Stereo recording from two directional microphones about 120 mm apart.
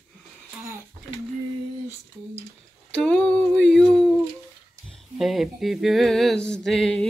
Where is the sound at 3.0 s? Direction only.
10° left (ahead or behind).